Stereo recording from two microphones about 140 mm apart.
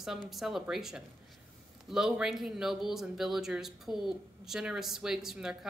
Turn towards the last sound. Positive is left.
turn(degrees=-5)  # may be behind; listen again after turning